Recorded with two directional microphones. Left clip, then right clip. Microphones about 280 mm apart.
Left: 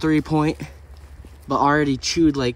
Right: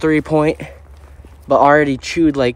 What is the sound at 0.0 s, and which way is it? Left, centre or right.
Speech, centre.